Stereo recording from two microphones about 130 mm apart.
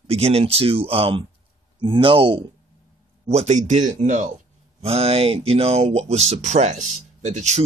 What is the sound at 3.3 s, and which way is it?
Speech, 60° right (ahead or behind).